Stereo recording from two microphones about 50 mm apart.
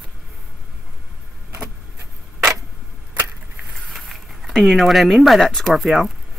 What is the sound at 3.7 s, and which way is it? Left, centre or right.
Speech, centre.